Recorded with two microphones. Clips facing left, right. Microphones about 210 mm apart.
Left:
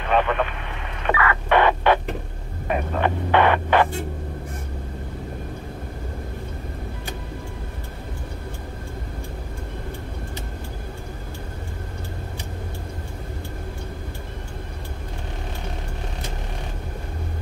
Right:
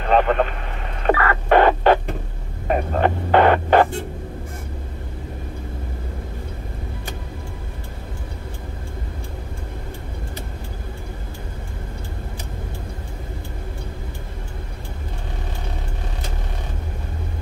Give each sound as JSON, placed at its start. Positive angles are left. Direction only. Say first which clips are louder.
{"t": 0.0, "sound": "vehicle", "louder": "right 4 dB", "side_deg": -40}
{"t": 1.0, "sound": "a sound", "louder": "right 4 dB", "side_deg": -40}
{"t": 2.7, "sound": "hum", "louder": "right 3 dB", "side_deg": -40}